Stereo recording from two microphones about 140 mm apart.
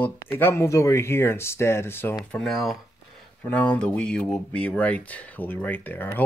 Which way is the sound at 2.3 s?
Centre (ahead or behind).